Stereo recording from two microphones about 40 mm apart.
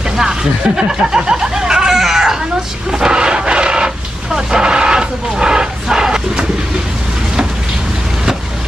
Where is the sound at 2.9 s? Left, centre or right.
Centre.